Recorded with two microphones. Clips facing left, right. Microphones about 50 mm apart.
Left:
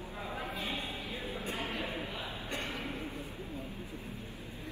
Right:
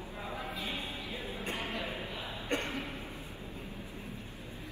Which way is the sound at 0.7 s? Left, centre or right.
Left.